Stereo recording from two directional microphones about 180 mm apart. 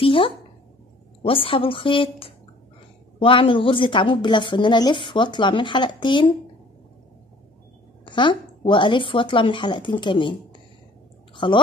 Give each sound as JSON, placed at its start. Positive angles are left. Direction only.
{"t": 0.0, "sound": "a woman's voice", "side_deg": 30}
{"t": 8.0, "sound": "a woman's voice", "side_deg": 25}